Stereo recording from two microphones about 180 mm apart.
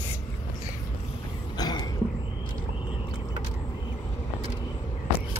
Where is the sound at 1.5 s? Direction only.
20° left (ahead or behind).